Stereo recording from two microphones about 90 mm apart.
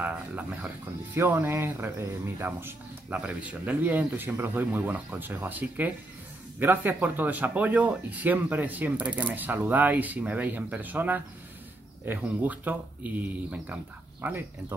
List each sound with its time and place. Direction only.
0.0 s speech: 15° right (ahead or behind)